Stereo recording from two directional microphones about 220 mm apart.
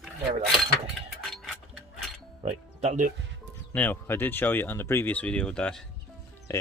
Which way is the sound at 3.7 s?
10° left (ahead or behind).